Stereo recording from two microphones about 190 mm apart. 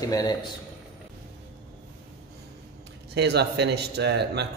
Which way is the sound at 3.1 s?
60° right (ahead or behind).